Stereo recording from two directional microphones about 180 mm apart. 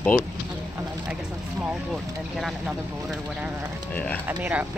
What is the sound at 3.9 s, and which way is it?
Speech, 10° left (ahead or behind).